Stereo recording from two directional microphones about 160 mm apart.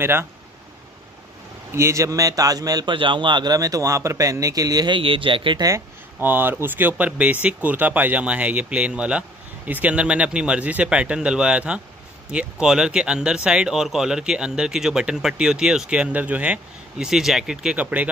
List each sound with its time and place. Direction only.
0.0 s speech: 15° right (ahead or behind)
1.7 s a man's voice: 15° right (ahead or behind)
6.1 s speech: 10° right (ahead or behind)